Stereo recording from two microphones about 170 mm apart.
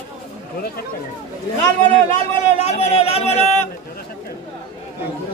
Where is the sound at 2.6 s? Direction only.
35° left (ahead or behind).